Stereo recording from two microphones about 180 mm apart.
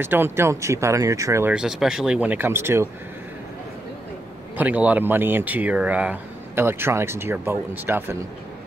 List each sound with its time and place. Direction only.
0.0 s speech: 10° right (ahead or behind)
1.5 s speech: 5° right (ahead or behind)
4.6 s speech: 10° right (ahead or behind)